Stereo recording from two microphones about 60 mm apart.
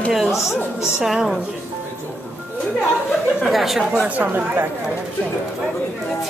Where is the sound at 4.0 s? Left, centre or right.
Right.